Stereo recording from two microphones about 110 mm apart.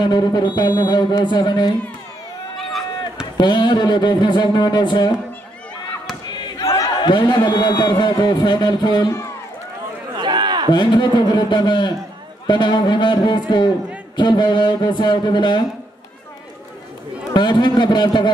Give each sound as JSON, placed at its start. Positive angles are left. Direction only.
{"t": 0.0, "sound": "a man's voice", "side_deg": 40}
{"t": 3.3, "sound": "speech", "side_deg": 45}
{"t": 6.2, "sound": "battle cry", "side_deg": 45}
{"t": 7.0, "sound": "a man's voice", "side_deg": 45}
{"t": 10.1, "sound": "a sound", "side_deg": -45}
{"t": 10.7, "sound": "a man's voice", "side_deg": 45}
{"t": 17.3, "sound": "speech", "side_deg": 45}